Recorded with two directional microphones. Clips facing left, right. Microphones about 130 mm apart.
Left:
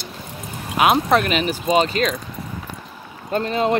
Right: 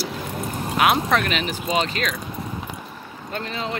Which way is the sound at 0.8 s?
25° left (ahead or behind).